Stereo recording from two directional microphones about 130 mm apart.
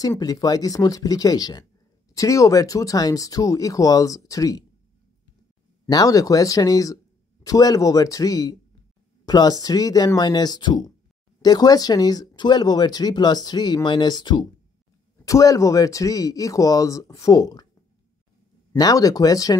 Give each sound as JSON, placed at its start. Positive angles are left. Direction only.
{"t": 0.2, "sound": "speech", "side_deg": 30}
{"t": 5.9, "sound": "speech", "side_deg": 30}
{"t": 18.8, "sound": "speech", "side_deg": 30}